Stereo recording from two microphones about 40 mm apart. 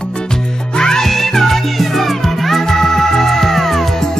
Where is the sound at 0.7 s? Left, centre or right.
Centre.